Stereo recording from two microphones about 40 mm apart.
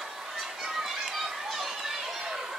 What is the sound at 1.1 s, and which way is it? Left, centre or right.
Children playing, centre.